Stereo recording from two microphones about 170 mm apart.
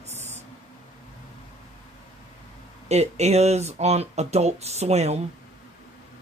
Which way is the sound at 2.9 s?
40° right (ahead or behind).